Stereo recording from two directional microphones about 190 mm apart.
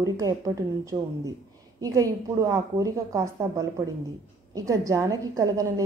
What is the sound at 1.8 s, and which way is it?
A woman's voice, 15° right (ahead or behind).